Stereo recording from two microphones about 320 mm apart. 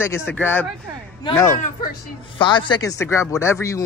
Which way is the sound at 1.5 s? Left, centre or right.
Left.